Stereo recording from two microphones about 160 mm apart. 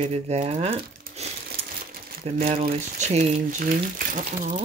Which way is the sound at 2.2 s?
40° right (ahead or behind).